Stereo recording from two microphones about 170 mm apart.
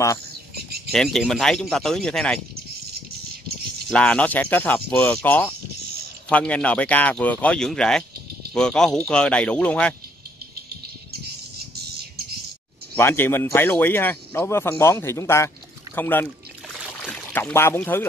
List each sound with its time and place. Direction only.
0.6 s bird: 70° right (ahead or behind)
0.9 s speech: centre (ahead or behind)
3.4 s a sound: 70° right (ahead or behind)
3.9 s speech: 5° left (ahead or behind)
12.9 s speech: 15° left (ahead or behind)
16.7 s trickle: centre (ahead or behind)